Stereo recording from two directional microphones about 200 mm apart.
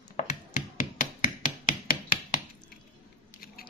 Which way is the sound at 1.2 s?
40° left (ahead or behind).